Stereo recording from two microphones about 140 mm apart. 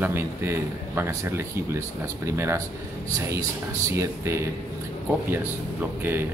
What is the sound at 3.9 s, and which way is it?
Speech, 20° right (ahead or behind).